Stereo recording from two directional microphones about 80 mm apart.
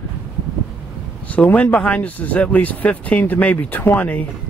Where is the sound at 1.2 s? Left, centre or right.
Centre.